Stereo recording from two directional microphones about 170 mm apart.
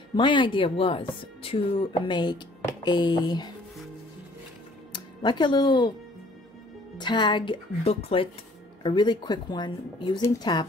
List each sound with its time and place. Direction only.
0.1 s speech: 30° left (ahead or behind)
4.9 s speech: 25° left (ahead or behind)
7.0 s speech: 25° left (ahead or behind)